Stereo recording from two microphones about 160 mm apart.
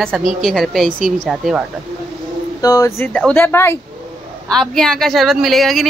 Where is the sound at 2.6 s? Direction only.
20° left (ahead or behind).